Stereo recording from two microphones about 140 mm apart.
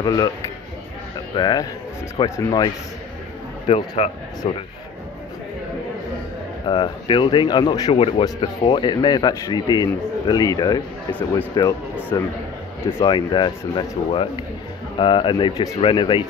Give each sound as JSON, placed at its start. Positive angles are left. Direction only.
{"t": 0.0, "sound": "a man's voice", "side_deg": 25}
{"t": 1.3, "sound": "speech", "side_deg": 30}
{"t": 2.2, "sound": "a man's voice", "side_deg": 20}
{"t": 3.6, "sound": "a man's voice", "side_deg": 40}
{"t": 6.7, "sound": "a man's voice", "side_deg": 35}